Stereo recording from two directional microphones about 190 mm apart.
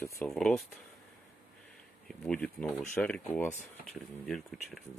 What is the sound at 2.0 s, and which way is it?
Speech, 5° left (ahead or behind).